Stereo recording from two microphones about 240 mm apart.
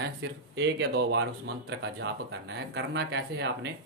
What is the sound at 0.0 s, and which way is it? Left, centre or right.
Speech, right.